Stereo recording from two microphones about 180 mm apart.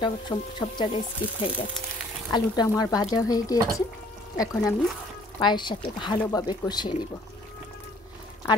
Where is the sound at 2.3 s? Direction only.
25° left (ahead or behind).